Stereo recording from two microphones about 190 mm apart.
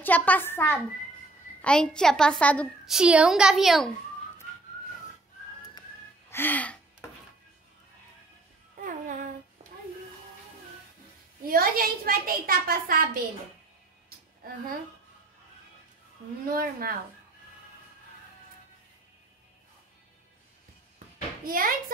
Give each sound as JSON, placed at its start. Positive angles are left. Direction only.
{"t": 0.0, "sound": "a woman's voice", "side_deg": 10}
{"t": 6.3, "sound": "gasp", "side_deg": 10}
{"t": 11.4, "sound": "a child's voice", "side_deg": -50}
{"t": 16.4, "sound": "a child's voice", "side_deg": -50}
{"t": 21.5, "sound": "a child's voice", "side_deg": -50}